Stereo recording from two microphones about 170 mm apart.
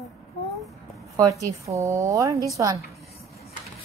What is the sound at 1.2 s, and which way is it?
A woman's voice, 20° right (ahead or behind).